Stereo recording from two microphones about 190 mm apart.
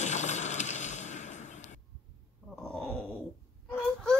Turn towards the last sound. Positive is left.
turn(degrees=5)  # may be behind; listen again after turning